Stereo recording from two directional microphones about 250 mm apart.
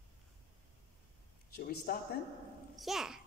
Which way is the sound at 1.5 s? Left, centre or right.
Left.